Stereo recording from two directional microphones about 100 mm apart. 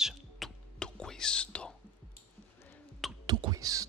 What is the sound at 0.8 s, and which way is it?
Whispering, 10° left (ahead or behind).